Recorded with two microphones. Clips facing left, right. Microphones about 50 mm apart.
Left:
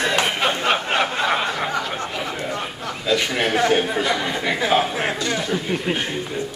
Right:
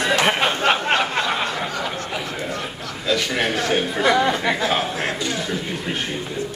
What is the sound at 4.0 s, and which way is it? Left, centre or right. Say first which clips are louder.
Speech: right 4 dB; right.